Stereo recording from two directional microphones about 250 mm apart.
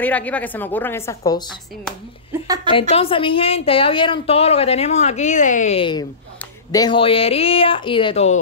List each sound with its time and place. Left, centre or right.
0.0 s a woman's voice: centre
2.4 s a woman's voice: centre
2.7 s a woman's voice: left